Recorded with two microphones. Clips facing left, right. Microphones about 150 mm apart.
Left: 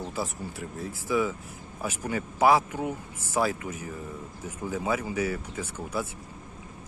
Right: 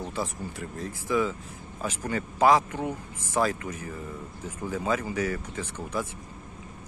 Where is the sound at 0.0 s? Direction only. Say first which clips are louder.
Right 1 dB; 10° left (ahead or behind).